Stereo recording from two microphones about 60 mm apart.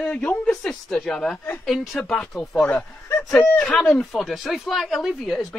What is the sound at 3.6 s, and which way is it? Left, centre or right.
Speech, centre.